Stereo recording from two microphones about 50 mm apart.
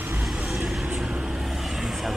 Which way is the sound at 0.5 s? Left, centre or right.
Centre.